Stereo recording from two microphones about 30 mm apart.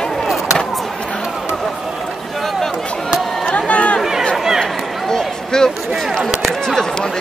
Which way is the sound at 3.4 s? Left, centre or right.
Left.